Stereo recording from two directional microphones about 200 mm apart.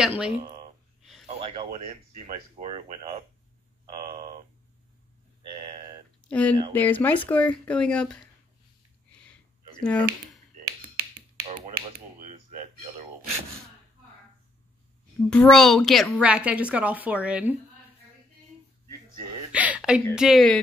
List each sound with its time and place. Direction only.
0.0 s a woman's voice: 5° right (ahead or behind)
0.3 s speech: 30° right (ahead or behind)
5.5 s speech: 30° right (ahead or behind)
6.2 s speech: 5° left (ahead or behind)
9.1 s a sound: 5° left (ahead or behind)
11.4 s speech: 30° right (ahead or behind)
12.2 s a sound: 35° right (ahead or behind)
15.2 s a woman's voice: 5° left (ahead or behind)
19.5 s a woman's voice: 5° right (ahead or behind)